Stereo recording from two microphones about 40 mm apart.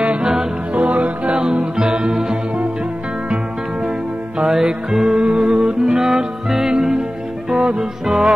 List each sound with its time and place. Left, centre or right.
0.0 s music: right
1.4 s music: right
4.4 s music: centre